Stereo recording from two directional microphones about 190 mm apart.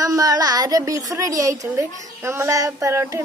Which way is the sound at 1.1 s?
15° right (ahead or behind).